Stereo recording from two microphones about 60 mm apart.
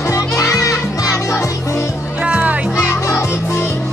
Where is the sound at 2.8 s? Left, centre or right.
Left.